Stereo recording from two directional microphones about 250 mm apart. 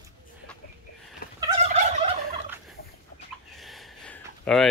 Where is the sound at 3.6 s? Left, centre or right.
Centre.